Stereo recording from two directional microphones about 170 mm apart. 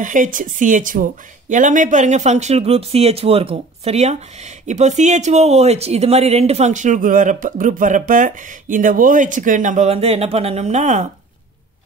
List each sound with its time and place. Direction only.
0.0 s speech: 50° right (ahead or behind)